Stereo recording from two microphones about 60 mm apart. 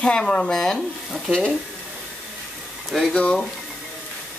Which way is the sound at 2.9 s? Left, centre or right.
Centre.